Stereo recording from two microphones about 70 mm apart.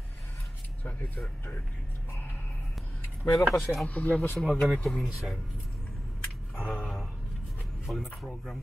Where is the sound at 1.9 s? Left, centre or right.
Left.